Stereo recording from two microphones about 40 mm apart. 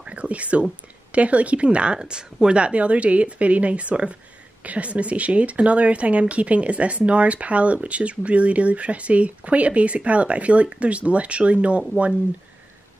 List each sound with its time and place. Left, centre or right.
0.0 s whispering: right
1.1 s a woman's voice: right